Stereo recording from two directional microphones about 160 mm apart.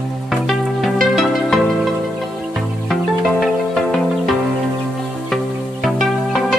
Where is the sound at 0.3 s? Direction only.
Centre (ahead or behind).